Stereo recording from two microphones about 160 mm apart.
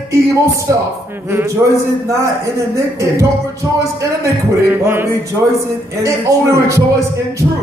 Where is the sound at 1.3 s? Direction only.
15° right (ahead or behind).